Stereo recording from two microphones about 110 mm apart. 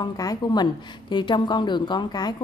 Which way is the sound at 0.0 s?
35° left (ahead or behind).